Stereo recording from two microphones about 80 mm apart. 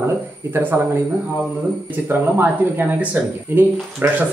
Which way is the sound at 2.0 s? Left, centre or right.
Right.